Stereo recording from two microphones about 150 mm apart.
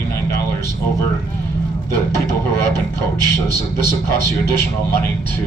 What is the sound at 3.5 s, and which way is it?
Speech, 30° right (ahead or behind).